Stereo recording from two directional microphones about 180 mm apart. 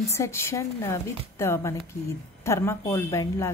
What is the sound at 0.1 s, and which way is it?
A woman's voice, 15° left (ahead or behind).